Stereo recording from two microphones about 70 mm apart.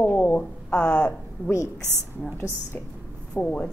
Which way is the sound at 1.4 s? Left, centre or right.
Right.